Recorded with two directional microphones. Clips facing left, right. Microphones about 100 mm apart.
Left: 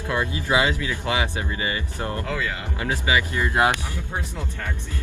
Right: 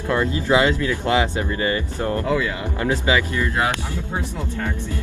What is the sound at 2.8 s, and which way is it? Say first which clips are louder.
Speech: right 3 dB; 15° left (ahead or behind).